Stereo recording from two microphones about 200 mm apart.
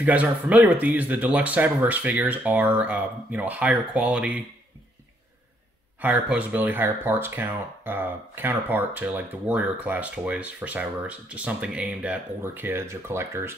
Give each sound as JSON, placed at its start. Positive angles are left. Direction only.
{"t": 0.0, "sound": "speech", "side_deg": -5}
{"t": 5.9, "sound": "speech", "side_deg": -5}